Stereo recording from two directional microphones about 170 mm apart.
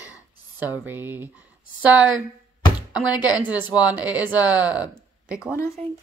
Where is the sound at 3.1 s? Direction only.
25° left (ahead or behind).